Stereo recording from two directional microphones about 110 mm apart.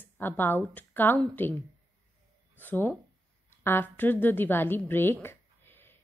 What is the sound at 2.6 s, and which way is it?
A woman's voice, 20° left (ahead or behind).